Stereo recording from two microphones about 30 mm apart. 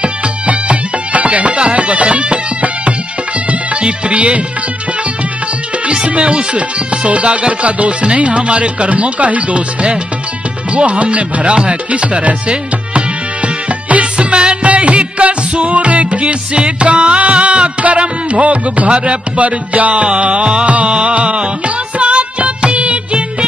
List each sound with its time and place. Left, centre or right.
0.0 s music: right
5.9 s music: right
14.1 s music: right
14.6 s music: right
20.6 s music: right